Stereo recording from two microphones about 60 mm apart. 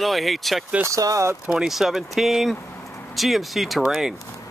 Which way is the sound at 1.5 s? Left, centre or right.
Centre.